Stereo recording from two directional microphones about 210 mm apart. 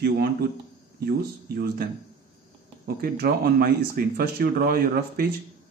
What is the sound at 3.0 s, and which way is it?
Speech, 45° right (ahead or behind).